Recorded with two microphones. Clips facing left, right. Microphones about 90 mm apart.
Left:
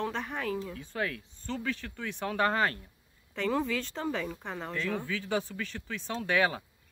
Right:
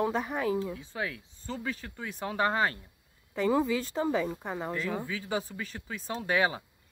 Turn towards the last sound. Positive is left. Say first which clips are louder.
# even
turn(degrees=-20)  # may be behind; listen again after turning